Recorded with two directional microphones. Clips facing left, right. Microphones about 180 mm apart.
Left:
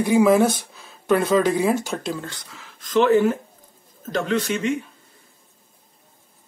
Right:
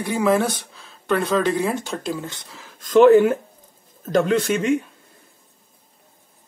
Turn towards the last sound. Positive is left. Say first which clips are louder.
# right 3 dB
turn(degrees=-50)  # may be behind; listen again after turning